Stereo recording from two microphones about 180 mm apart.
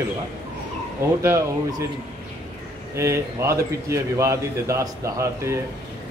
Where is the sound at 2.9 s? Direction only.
15° right (ahead or behind).